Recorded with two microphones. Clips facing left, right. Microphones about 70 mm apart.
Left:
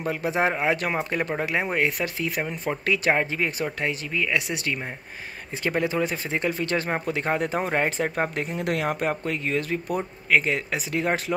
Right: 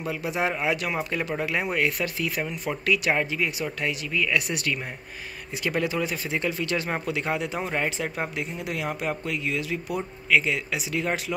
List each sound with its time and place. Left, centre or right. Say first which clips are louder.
0.0 s speech: left 3 dB; left